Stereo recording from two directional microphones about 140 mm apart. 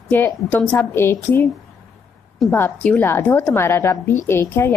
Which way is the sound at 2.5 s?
15° left (ahead or behind).